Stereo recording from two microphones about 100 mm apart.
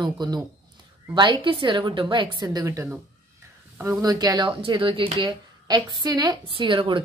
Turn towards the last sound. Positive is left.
turn(degrees=-55)  # may be behind; listen again after turning